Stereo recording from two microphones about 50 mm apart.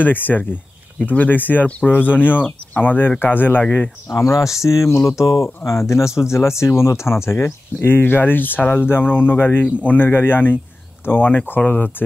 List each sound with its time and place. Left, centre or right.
0.0 s speech: left
4.1 s speech: left
8.8 s speech: left